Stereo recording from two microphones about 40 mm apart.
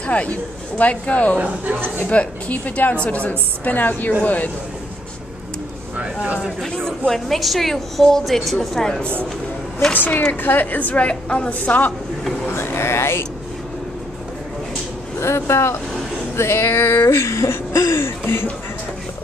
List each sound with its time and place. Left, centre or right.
0.0 s a woman's voice: left
1.4 s a woman's voice: right
2.0 s a woman's voice: left
6.7 s a woman's voice: centre
7.3 s a woman's voice: centre
8.7 s a woman's voice: centre
9.9 s a woman's voice: left
12.4 s speech: left
15.5 s speech: left